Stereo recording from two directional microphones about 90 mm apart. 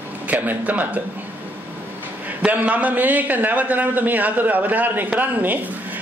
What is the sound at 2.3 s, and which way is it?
A man's voice, 15° right (ahead or behind).